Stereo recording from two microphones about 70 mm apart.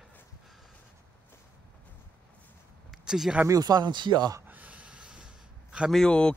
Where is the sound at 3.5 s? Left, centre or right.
Right.